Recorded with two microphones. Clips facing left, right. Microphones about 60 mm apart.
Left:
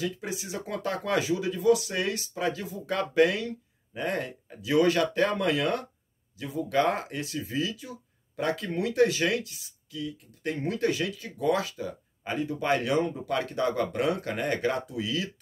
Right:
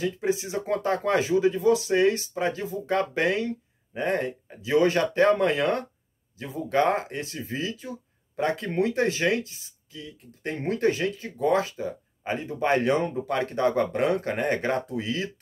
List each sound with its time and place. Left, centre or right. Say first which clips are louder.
0.0 s speech: right 6 dB; right